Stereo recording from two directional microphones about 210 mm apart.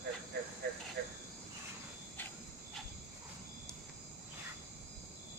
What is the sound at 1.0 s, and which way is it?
Cricket, 50° right (ahead or behind).